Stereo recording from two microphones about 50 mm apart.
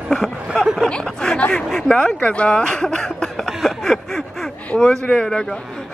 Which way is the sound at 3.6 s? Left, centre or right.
Centre.